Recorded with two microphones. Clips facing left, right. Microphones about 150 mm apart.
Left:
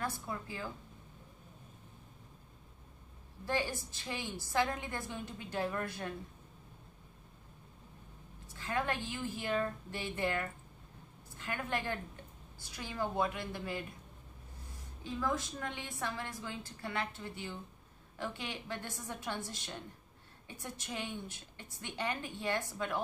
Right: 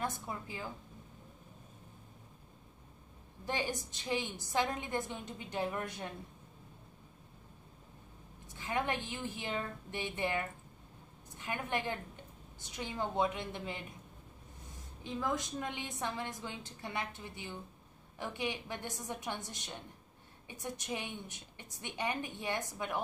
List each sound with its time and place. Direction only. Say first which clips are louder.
0.0 s a woman's voice: even; 20° right (ahead or behind)
3.4 s a woman's voice: left 1 dB; 20° right (ahead or behind)
8.5 s a woman's voice: even; 20° right (ahead or behind)
15.1 s a woman's voice: even; 20° right (ahead or behind)